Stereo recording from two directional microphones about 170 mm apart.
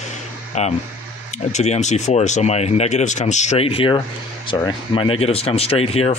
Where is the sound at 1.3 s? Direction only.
40° left (ahead or behind).